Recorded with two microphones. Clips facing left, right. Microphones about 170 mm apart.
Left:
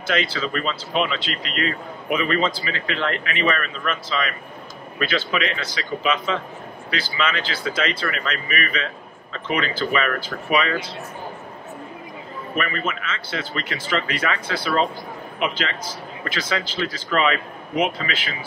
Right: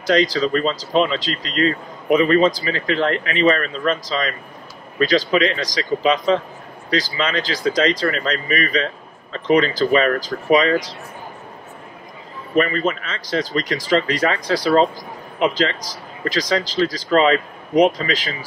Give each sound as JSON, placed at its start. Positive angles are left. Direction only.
{"t": 0.0, "sound": "speech", "side_deg": -40}
{"t": 12.5, "sound": "speech", "side_deg": -35}